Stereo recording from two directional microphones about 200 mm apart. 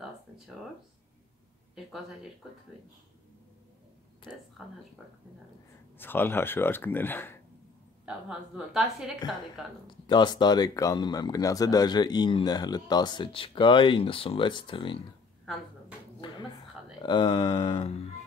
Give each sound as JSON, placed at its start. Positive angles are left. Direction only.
{"t": 4.3, "sound": "a woman's voice", "side_deg": -5}
{"t": 5.9, "sound": "speech", "side_deg": 10}
{"t": 8.0, "sound": "a woman's voice", "side_deg": -5}
{"t": 10.0, "sound": "speech", "side_deg": 20}
{"t": 16.2, "sound": "speech", "side_deg": 20}